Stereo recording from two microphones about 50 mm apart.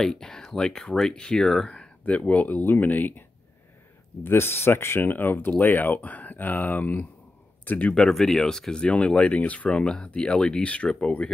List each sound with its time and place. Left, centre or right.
0.0 s speech: centre
1.7 s speech: left
2.6 s speech: left
4.2 s speech: left
7.9 s speech: centre
8.8 s speech: left